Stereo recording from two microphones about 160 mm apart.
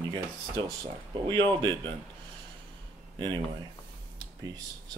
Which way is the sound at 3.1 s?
30° right (ahead or behind).